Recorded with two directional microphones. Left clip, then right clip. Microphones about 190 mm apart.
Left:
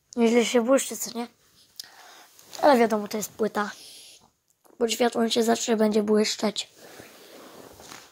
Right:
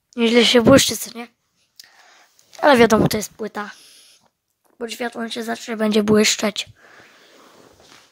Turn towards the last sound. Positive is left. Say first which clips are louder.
# right 7 dB
turn(degrees=-25)  # may be behind; listen again after turning